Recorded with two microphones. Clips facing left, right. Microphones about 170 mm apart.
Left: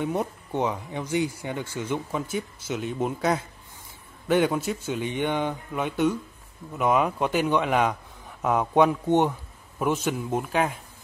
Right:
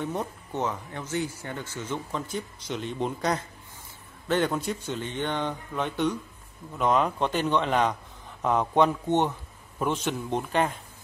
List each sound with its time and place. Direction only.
0.0 s speech: 10° left (ahead or behind)